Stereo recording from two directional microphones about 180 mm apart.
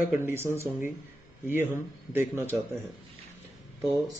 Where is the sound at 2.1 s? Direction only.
10° right (ahead or behind).